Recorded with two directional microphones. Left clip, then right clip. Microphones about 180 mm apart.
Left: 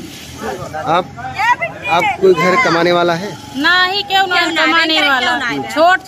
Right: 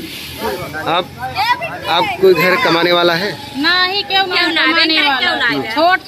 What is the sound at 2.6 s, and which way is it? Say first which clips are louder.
Speech: even; 10° left (ahead or behind).